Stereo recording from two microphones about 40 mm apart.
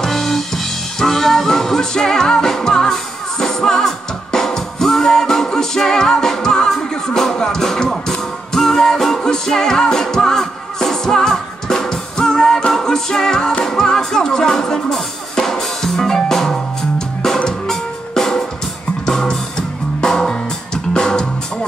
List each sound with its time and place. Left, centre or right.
0.0 s music: centre; by 21.3 s left